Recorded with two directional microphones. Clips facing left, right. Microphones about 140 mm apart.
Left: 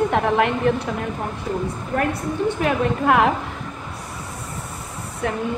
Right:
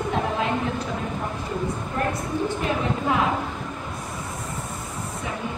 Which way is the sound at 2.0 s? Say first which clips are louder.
Left 3 dB; 65° left (ahead or behind).